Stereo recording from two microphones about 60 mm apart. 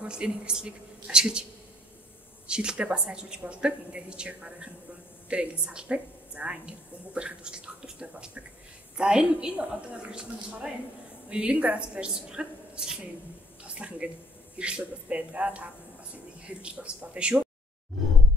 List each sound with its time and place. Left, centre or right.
0.0 s a woman's voice: centre
2.4 s a woman's voice: centre